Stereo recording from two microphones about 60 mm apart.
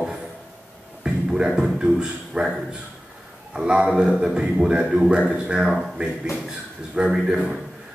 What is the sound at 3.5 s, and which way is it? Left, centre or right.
A man's voice, centre.